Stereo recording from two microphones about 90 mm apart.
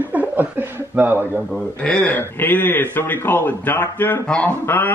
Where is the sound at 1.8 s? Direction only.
15° left (ahead or behind).